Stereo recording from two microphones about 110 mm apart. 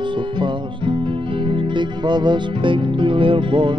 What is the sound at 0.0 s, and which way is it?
Music, 50° right (ahead or behind).